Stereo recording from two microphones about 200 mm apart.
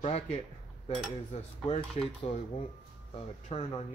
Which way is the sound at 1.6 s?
30° left (ahead or behind).